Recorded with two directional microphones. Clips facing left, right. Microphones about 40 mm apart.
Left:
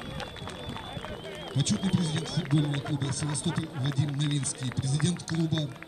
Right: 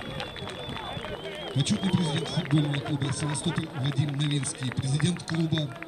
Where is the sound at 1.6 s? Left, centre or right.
Right.